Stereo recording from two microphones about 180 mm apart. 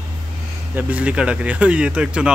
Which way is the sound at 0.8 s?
5° right (ahead or behind).